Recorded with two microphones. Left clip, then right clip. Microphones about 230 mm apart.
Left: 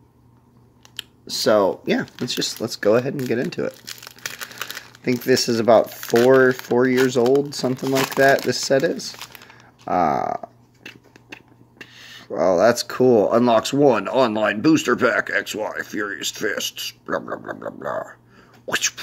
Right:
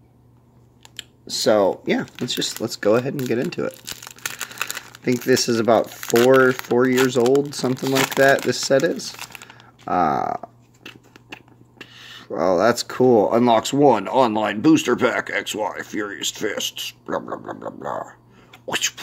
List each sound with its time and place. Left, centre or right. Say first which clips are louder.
0.9 s speech: even; centre
3.8 s crumpling: right 2 dB; centre
5.0 s speech: even; centre
5.9 s speech: even; centre
7.4 s speech: even; centre